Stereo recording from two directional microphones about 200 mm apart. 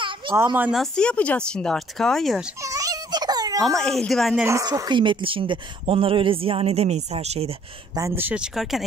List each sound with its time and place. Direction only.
0.4 s speech: 10° right (ahead or behind)
2.6 s baby cry: 15° right (ahead or behind)
3.6 s speech: centre (ahead or behind)
4.5 s speech: 15° right (ahead or behind); by 7.5 s 30° right (ahead or behind)
7.9 s speech: 15° right (ahead or behind)